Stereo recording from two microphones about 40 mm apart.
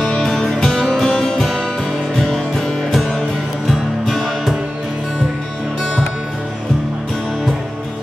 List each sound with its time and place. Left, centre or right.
0.4 s music: centre
4.1 s music: centre